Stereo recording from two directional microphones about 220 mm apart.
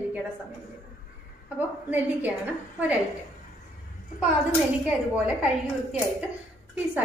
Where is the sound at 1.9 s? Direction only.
10° right (ahead or behind).